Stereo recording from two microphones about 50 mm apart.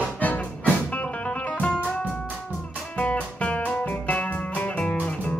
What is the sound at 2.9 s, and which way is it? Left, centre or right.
Music, left.